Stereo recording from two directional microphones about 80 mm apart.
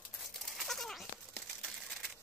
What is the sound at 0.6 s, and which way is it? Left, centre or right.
Typewriter, centre.